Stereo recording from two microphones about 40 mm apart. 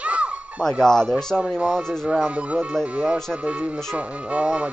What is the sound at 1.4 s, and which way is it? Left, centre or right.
Speech, centre.